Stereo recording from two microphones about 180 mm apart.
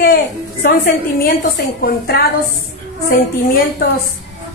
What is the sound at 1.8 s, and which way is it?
A woman's voice, 60° left (ahead or behind).